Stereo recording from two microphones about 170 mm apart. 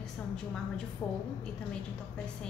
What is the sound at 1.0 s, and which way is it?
Speech, 20° left (ahead or behind).